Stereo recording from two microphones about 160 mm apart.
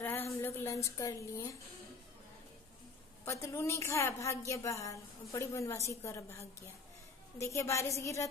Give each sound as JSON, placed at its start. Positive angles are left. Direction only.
{"t": 0.0, "sound": "a sound", "side_deg": 15}
{"t": 0.8, "sound": "a woman's voice", "side_deg": 20}
{"t": 3.3, "sound": "a woman's voice", "side_deg": 20}